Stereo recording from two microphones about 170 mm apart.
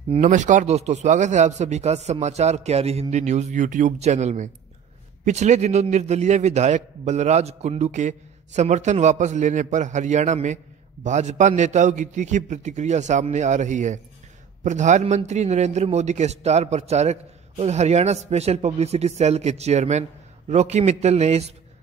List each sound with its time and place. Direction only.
0.2 s a man's voice: 50° right (ahead or behind)